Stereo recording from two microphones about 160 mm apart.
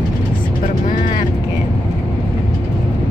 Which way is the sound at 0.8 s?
55° left (ahead or behind).